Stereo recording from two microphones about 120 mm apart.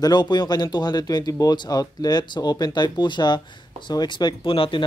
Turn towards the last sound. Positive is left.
turn(degrees=45)  # may be behind; listen again after turning